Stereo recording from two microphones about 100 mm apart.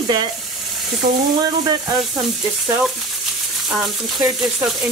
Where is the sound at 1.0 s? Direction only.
45° right (ahead or behind).